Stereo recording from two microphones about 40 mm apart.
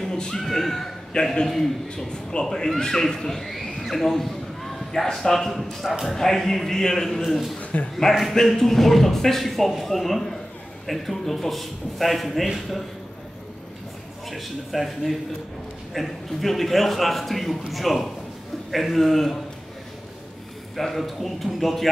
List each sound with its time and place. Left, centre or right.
0.0 s a sound: centre
0.4 s a man's voice: centre
1.1 s a man's voice: centre
1.5 s a man's voice: centre
7.7 s a man's voice: left
8.1 s a man's voice: centre
14.3 s a man's voice: centre
20.7 s a man's voice: centre